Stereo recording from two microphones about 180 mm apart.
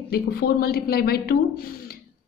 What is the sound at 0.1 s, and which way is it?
A woman's voice, 60° left (ahead or behind).